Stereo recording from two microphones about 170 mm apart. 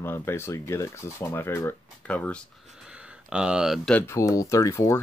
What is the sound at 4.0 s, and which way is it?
Speech, 15° left (ahead or behind).